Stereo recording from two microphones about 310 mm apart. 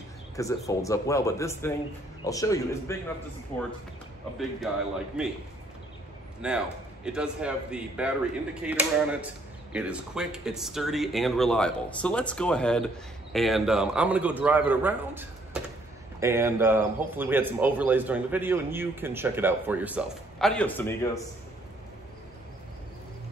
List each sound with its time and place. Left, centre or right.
0.4 s speech: centre
3.5 s speech: left
5.2 s speech: centre
6.4 s speech: centre